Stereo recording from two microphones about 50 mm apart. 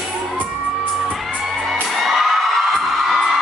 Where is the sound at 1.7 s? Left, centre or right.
Centre.